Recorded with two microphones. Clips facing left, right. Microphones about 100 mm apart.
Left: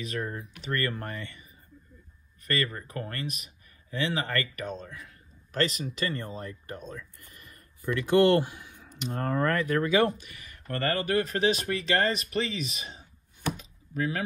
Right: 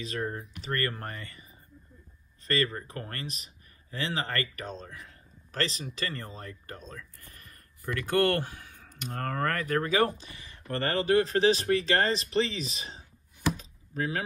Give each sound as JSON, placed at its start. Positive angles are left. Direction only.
{"t": 0.0, "sound": "speech", "side_deg": -35}
{"t": 2.4, "sound": "speech", "side_deg": -30}
{"t": 6.0, "sound": "speech", "side_deg": 30}
{"t": 7.2, "sound": "a sound", "side_deg": -40}
{"t": 8.7, "sound": "speech", "side_deg": -45}
{"t": 13.6, "sound": "door", "side_deg": -35}